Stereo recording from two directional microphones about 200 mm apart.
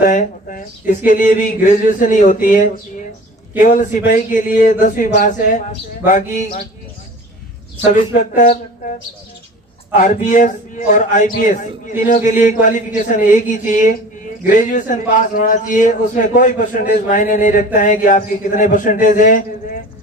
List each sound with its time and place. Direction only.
0.0 s a man's voice: 40° left (ahead or behind)
7.9 s a man's voice: 30° left (ahead or behind)